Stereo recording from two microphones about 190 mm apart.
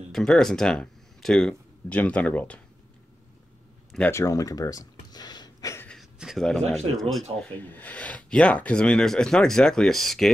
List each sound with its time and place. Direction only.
0.1 s speech: centre (ahead or behind)
3.9 s speech: 10° left (ahead or behind)
5.9 s a sound: centre (ahead or behind)
7.0 s speech: centre (ahead or behind)